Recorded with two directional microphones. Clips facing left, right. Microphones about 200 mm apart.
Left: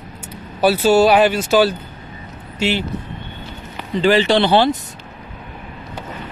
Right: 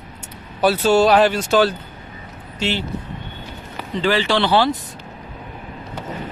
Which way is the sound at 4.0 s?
20° left (ahead or behind).